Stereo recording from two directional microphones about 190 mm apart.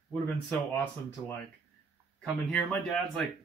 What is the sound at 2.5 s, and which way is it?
Speech, 5° left (ahead or behind).